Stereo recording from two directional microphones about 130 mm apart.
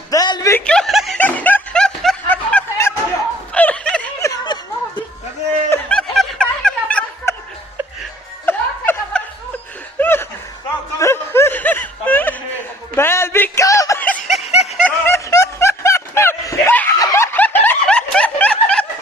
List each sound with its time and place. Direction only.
0.1 s a sound: 30° left (ahead or behind)
0.5 s snicker: 10° left (ahead or behind)
1.2 s snicker: 10° left (ahead or behind)
4.2 s a sound: 25° left (ahead or behind)
5.7 s music: 5° left (ahead or behind)
7.3 s chuckle: 20° left (ahead or behind)
8.5 s music: 15° left (ahead or behind)
9.9 s chuckle: 15° left (ahead or behind)
11.0 s a sound: 20° left (ahead or behind)
13.9 s snicker: 10° left (ahead or behind)
14.2 s snicker: centre (ahead or behind)
14.8 s snicker: 15° left (ahead or behind)